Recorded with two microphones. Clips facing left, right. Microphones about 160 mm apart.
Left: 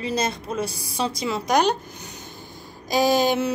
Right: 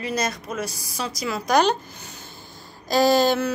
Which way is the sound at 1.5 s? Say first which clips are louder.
Right 2 dB; 15° left (ahead or behind).